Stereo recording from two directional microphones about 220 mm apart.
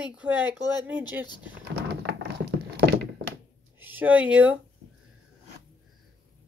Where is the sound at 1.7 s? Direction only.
50° right (ahead or behind).